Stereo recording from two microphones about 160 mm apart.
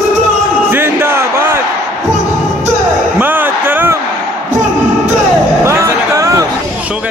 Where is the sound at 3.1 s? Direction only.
10° right (ahead or behind).